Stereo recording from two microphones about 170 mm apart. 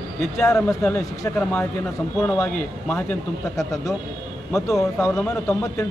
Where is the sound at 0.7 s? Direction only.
10° left (ahead or behind).